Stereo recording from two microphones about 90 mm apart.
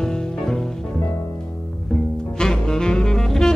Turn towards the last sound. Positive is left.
turn(degrees=5)  # may be behind; listen again after turning